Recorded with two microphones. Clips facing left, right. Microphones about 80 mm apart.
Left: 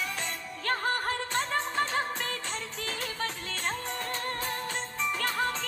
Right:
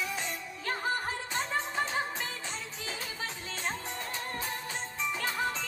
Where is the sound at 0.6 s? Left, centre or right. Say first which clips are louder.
Left 3 dB; left.